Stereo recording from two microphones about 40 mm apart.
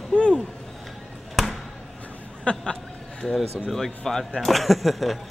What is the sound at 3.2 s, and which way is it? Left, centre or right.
Speech, centre.